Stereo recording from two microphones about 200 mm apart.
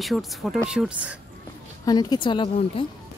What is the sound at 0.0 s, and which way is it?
Speech, centre (ahead or behind).